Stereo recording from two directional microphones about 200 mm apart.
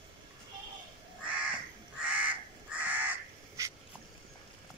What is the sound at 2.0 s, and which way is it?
Crow, 5° right (ahead or behind).